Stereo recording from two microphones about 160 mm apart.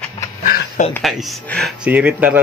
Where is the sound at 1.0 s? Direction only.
Centre (ahead or behind).